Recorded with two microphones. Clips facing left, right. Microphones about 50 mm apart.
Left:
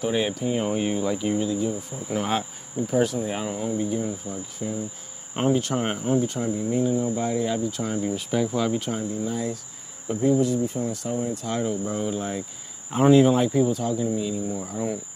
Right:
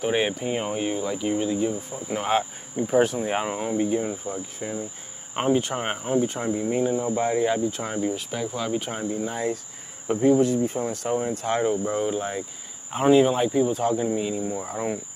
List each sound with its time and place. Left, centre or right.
0.0 s speech: right
0.7 s speech: centre
1.4 s speech: right
1.7 s speech: centre
2.9 s speech: right
5.3 s speech: right
8.0 s speech: centre
8.9 s speech: right; by 13.7 s centre
13.7 s speech: right